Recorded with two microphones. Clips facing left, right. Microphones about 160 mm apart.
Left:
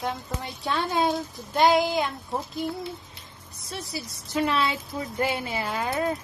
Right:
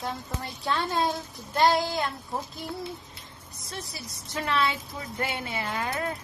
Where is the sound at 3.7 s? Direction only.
30° left (ahead or behind).